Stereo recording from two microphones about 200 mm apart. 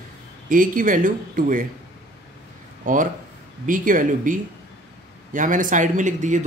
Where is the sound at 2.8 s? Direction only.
40° right (ahead or behind).